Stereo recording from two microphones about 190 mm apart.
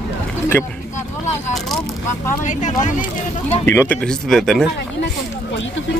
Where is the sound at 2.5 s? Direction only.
40° left (ahead or behind).